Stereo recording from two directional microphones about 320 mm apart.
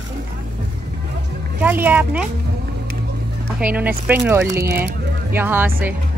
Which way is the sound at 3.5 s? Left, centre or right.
Centre.